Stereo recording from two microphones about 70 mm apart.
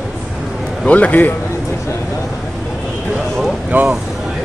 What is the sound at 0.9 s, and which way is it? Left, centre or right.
Speech, left.